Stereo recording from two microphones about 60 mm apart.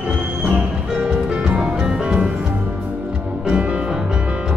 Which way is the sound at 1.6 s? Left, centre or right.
Centre.